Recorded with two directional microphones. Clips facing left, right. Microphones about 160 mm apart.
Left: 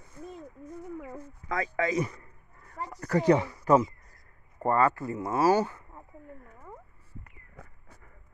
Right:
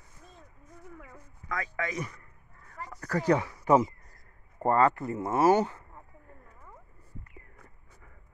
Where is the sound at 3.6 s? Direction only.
15° right (ahead or behind).